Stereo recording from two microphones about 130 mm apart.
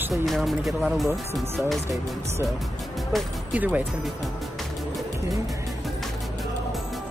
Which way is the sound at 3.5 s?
10° right (ahead or behind).